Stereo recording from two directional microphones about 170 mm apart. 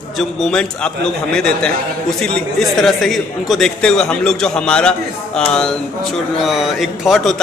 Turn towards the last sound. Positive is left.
turn(degrees=0)  # may be behind; listen again after turning